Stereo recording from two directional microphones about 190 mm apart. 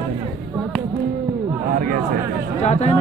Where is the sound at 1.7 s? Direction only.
45° right (ahead or behind).